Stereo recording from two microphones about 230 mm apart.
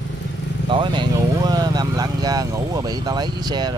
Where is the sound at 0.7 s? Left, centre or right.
Centre.